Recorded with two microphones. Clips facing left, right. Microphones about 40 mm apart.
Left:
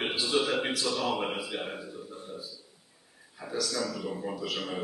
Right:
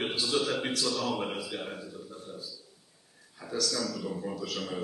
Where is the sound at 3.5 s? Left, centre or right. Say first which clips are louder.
Even; centre.